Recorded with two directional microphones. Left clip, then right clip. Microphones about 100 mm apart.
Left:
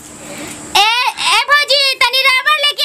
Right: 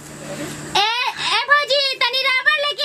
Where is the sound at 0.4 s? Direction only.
25° left (ahead or behind).